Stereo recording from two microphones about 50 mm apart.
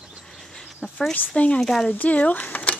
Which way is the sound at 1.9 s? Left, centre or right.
Left.